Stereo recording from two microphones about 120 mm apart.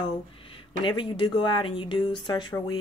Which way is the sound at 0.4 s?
45° left (ahead or behind).